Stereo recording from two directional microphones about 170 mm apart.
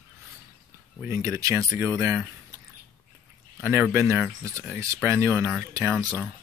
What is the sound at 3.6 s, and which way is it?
Speech, 10° right (ahead or behind).